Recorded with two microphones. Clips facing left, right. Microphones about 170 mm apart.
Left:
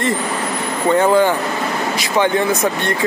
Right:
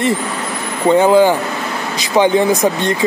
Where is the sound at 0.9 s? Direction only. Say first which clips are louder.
Right 4 dB; 10° right (ahead or behind).